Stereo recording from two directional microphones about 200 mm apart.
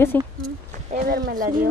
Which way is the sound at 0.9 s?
40° right (ahead or behind).